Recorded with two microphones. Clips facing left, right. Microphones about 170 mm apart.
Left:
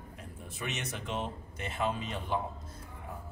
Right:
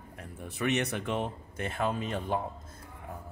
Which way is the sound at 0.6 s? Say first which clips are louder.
Right 9 dB; 60° right (ahead or behind).